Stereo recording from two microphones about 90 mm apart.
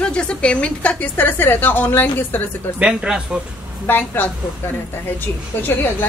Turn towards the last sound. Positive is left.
turn(degrees=25)  # may be behind; listen again after turning